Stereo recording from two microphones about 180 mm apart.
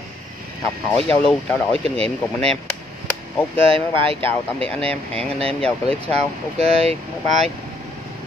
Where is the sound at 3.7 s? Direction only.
30° right (ahead or behind).